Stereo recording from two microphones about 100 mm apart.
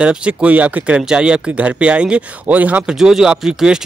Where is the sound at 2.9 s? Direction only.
5° right (ahead or behind).